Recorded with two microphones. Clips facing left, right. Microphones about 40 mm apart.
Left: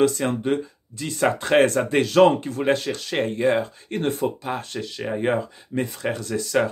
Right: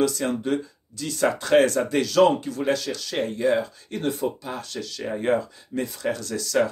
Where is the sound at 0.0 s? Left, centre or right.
Left.